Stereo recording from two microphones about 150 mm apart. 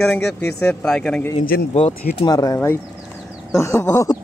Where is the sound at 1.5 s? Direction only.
80° left.